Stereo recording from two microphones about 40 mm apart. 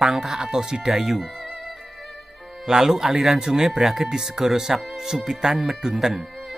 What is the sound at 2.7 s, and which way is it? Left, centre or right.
Speech, centre.